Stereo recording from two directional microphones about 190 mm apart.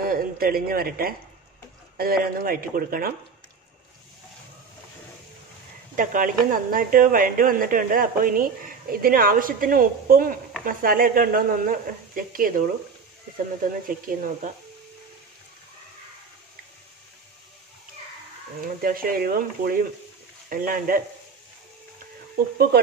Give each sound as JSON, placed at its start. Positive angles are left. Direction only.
{"t": 0.0, "sound": "a man's voice", "side_deg": -50}
{"t": 5.9, "sound": "speech", "side_deg": -45}
{"t": 14.0, "sound": "speech", "side_deg": -45}
{"t": 18.6, "sound": "speech", "side_deg": -50}